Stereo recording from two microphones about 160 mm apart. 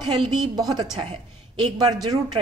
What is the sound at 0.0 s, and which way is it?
A woman's voice, 30° right (ahead or behind).